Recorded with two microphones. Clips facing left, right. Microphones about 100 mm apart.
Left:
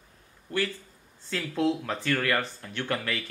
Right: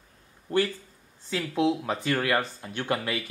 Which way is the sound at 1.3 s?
10° right (ahead or behind).